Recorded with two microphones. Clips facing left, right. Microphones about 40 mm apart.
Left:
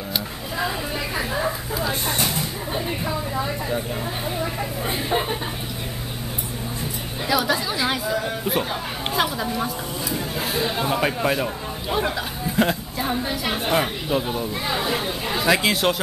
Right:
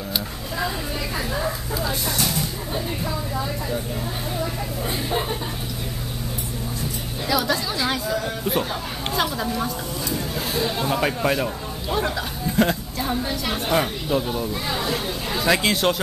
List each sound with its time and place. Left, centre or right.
0.6 s vehicle: centre
2.0 s a sound: left
4.4 s speech: centre
7.2 s a woman's voice: centre